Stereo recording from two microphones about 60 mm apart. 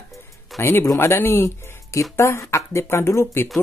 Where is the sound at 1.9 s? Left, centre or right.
Left.